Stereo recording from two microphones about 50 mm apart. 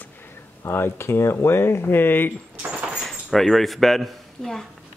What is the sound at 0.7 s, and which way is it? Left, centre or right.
Speech, left.